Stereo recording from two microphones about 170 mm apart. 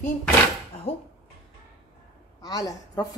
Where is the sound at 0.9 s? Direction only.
35° left (ahead or behind).